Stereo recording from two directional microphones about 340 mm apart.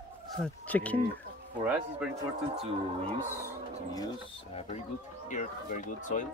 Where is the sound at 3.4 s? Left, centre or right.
Centre.